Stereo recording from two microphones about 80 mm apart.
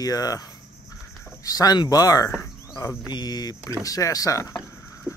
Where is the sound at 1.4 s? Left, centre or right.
Left.